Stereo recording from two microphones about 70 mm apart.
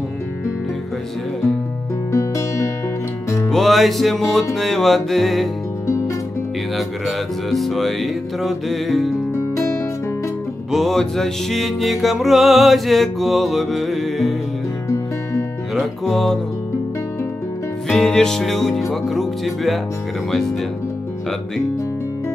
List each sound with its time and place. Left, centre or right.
2.1 s music: left
3.4 s music: centre
5.9 s music: left
6.8 s music: centre
9.3 s music: left
10.7 s music: centre
15.7 s music: centre
17.8 s music: centre